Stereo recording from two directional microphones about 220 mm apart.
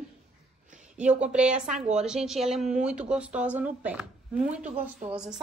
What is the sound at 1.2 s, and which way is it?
Speech, 5° right (ahead or behind).